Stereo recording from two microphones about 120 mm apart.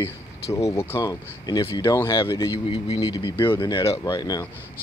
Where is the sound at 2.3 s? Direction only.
35° left (ahead or behind).